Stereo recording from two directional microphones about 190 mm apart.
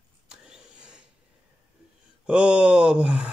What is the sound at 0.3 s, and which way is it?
Vehicle, 5° right (ahead or behind).